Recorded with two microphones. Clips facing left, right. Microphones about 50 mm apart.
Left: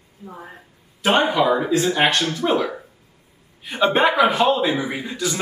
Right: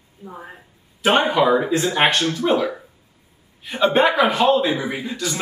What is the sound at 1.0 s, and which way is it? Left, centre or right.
Speech, centre.